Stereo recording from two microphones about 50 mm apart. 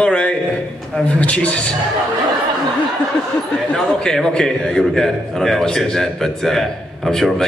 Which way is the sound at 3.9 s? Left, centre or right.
Centre.